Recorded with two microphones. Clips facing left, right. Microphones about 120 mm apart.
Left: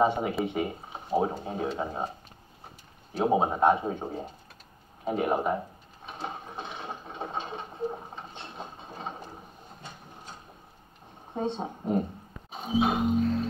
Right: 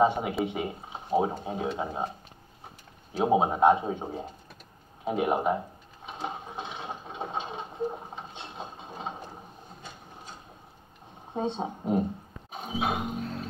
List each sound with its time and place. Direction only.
0.0 s speech: 15° right (ahead or behind)
3.2 s speech: 15° right (ahead or behind)
6.0 s a sound: 15° right (ahead or behind)
8.1 s ratchet: 20° right (ahead or behind)
11.3 s speech: 20° right (ahead or behind)
12.6 s music: 5° right (ahead or behind)